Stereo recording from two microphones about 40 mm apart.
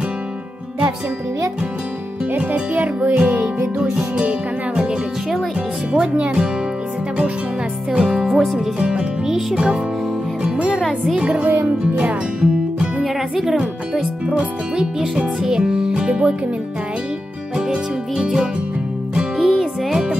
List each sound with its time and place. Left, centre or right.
2.5 s speech: right
4.2 s music: right
7.9 s music: centre
8.3 s speech: centre
8.5 s music: right
9.2 s speech: centre
11.1 s music: right
13.0 s music: centre
14.3 s music: centre
17.6 s music: centre
19.6 s music: centre